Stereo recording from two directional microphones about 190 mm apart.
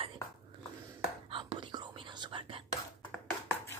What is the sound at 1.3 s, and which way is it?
Whispering, 25° right (ahead or behind).